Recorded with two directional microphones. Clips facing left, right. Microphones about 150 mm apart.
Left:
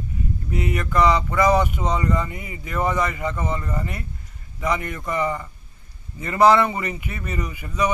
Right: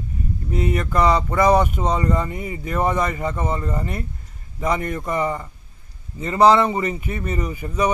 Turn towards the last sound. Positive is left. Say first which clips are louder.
# right 2 dB
turn(degrees=-35)  # may be behind; listen again after turning